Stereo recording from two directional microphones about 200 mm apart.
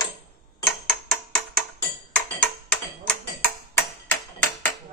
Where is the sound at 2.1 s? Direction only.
5° left (ahead or behind).